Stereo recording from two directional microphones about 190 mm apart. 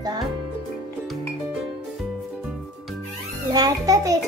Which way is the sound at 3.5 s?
20° right (ahead or behind).